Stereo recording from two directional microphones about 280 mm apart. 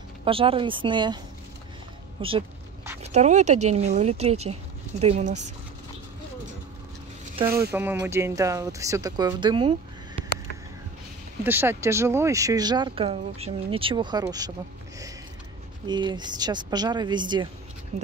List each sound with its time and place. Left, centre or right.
0.2 s speech: centre
2.2 s a sound: centre
3.0 s speech: right
7.4 s speech: right
7.7 s speech: centre
11.4 s speech: centre
15.9 s speech: centre